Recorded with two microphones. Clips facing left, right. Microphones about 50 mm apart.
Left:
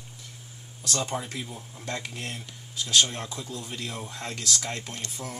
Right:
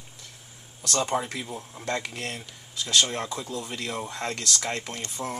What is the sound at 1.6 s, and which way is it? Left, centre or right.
Speech, centre.